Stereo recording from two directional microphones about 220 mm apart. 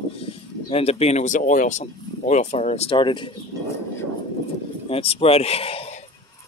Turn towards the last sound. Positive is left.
turn(degrees=25)  # may be behind; listen again after turning